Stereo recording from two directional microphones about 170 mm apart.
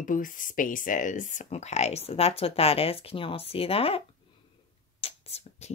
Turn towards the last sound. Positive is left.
turn(degrees=35)  # may be behind; listen again after turning